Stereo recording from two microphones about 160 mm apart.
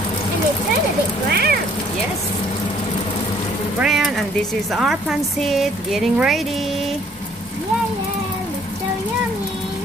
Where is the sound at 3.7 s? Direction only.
5° right (ahead or behind).